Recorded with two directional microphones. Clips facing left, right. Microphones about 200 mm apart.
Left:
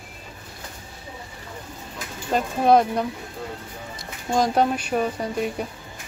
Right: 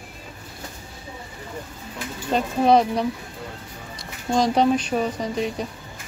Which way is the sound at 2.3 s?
5° left (ahead or behind).